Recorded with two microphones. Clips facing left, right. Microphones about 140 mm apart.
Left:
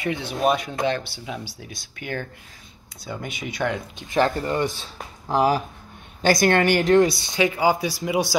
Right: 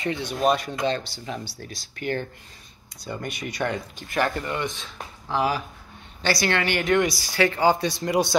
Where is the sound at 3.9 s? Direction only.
30° left (ahead or behind); by 6.7 s 50° left (ahead or behind).